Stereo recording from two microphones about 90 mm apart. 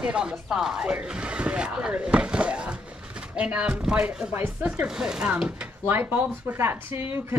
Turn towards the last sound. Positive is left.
turn(degrees=-25)  # may be behind; listen again after turning